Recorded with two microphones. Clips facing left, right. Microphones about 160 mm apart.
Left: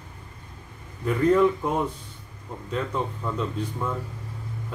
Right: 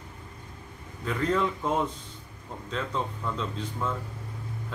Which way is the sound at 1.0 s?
15° left (ahead or behind).